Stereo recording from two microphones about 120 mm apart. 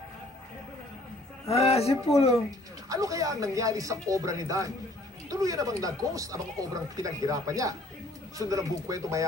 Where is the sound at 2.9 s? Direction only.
30° right (ahead or behind).